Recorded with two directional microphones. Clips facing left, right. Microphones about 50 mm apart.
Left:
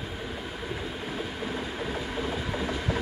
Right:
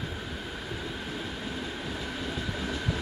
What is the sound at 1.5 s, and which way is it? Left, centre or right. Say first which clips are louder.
Train: left 3 dB; left.